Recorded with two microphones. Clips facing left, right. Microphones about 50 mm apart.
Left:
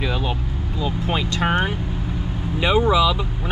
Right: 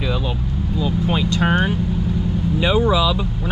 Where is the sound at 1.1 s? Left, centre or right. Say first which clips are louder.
Right 1 dB; left.